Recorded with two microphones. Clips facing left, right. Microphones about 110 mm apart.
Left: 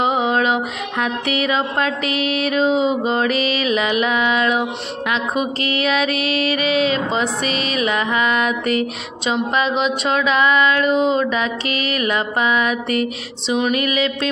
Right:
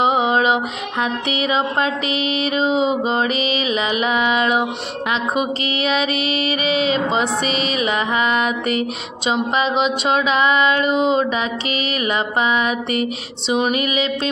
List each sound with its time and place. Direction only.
0.0 s music: 5° right (ahead or behind)
2.0 s music: 50° left (ahead or behind)
2.5 s mantra: centre (ahead or behind)
3.6 s music: 5° right (ahead or behind)
5.7 s music: 50° left (ahead or behind)
7.8 s music: 15° right (ahead or behind)
9.7 s speech: 30° right (ahead or behind)
10.3 s music: 15° right (ahead or behind)
10.9 s mantra: 5° right (ahead or behind)
12.0 s music: 10° right (ahead or behind)